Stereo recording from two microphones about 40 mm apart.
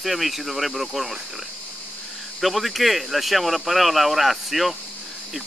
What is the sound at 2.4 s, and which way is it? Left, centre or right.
Speech, centre.